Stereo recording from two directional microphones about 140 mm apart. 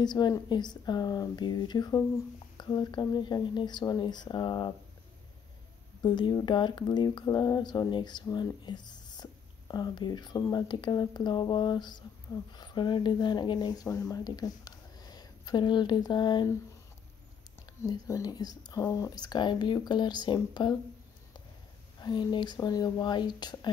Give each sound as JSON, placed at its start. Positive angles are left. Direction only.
{"t": 0.0, "sound": "speech", "side_deg": 30}
{"t": 6.0, "sound": "speech", "side_deg": 35}
{"t": 17.8, "sound": "speech", "side_deg": 25}
{"t": 22.0, "sound": "speech", "side_deg": 35}